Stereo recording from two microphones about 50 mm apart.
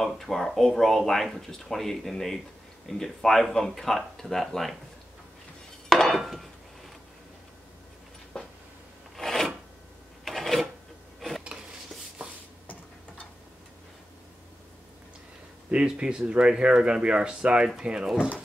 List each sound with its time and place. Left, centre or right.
0.2 s speech: centre
5.9 s a sound: centre
9.1 s filing: centre
11.1 s dishes: centre
15.7 s speech: right